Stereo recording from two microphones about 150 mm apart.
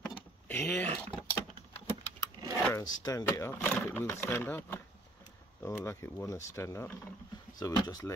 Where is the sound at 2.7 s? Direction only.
20° left (ahead or behind).